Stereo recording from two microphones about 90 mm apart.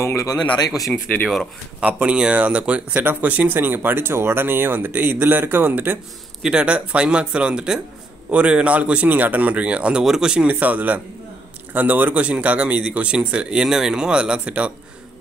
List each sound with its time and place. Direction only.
0.0 s speech: 40° left (ahead or behind)
0.7 s speech: centre (ahead or behind)
1.8 s speech: 15° right (ahead or behind)